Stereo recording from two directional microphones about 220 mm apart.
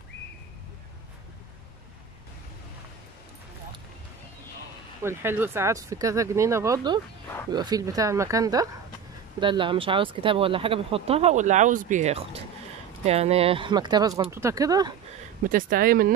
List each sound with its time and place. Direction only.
5.0 s speech: 10° right (ahead or behind)
15.4 s speech: 40° right (ahead or behind)